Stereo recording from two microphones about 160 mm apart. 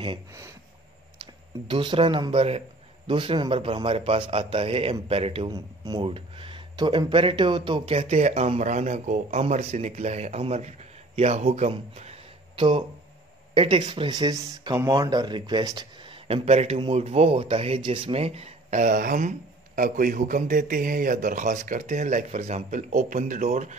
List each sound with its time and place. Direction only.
0.3 s speech: 20° right (ahead or behind)
1.7 s speech: 30° right (ahead or behind); by 23.8 s 50° right (ahead or behind)